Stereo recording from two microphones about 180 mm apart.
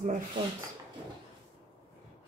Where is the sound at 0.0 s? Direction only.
45° right (ahead or behind).